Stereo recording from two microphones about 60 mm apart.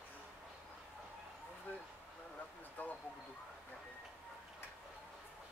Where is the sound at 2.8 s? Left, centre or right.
Left.